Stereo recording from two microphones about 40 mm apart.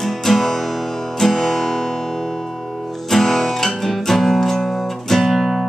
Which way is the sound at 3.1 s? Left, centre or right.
Centre.